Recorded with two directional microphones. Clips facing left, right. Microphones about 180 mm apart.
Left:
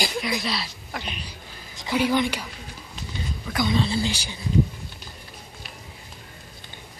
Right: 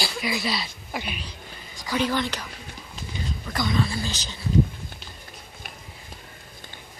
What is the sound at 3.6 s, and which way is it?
Speech, 25° left (ahead or behind).